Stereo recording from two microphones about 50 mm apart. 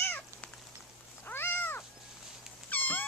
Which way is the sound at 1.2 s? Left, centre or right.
Left.